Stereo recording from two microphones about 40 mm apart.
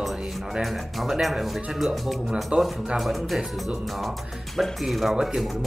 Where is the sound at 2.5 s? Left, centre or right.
Right.